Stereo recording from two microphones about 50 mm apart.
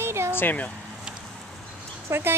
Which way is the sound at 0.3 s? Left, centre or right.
Left.